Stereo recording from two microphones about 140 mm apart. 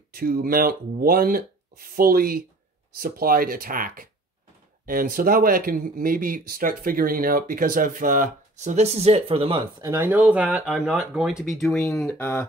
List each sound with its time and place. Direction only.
0.1 s speech: 90° right; by 9.8 s 40° right (ahead or behind)
9.8 s speech: 15° right (ahead or behind); by 12.2 s centre (ahead or behind)
12.2 s speech: 15° left (ahead or behind)